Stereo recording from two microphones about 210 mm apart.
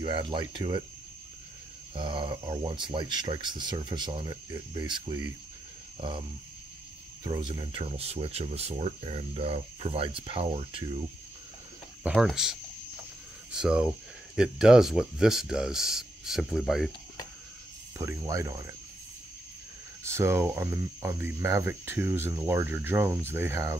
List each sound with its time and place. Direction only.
0.0 s speech: 25° right (ahead or behind)
2.0 s speech: 25° right (ahead or behind)
5.9 s cricket: 25° right (ahead or behind)
7.2 s speech: 20° right (ahead or behind)
12.0 s speech: 5° right (ahead or behind)
17.9 s speech: 15° right (ahead or behind)
20.0 s speech: 10° right (ahead or behind)